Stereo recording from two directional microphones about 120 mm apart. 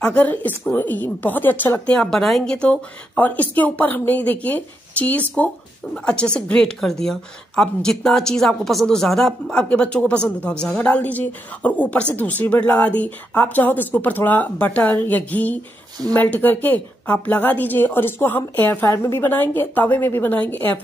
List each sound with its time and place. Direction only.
0.0 s a woman's voice: 10° left (ahead or behind)